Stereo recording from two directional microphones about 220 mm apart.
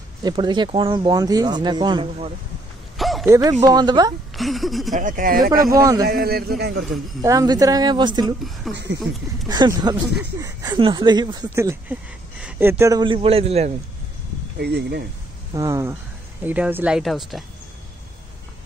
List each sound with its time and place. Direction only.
0.2 s speech: 20° right (ahead or behind)
3.0 s a sound: centre (ahead or behind)
3.6 s speech: 20° right (ahead or behind)
4.4 s speech: centre (ahead or behind)
4.9 s speech: 35° right (ahead or behind)
5.5 s speech: 15° right (ahead or behind)
6.0 s a man's voice: 45° right (ahead or behind)
7.2 s speech: 15° right (ahead or behind)
8.6 s speech: centre (ahead or behind)
9.5 s speech: 20° right (ahead or behind)
14.6 s a man's voice: 50° right (ahead or behind)
15.5 s speech: 15° right (ahead or behind)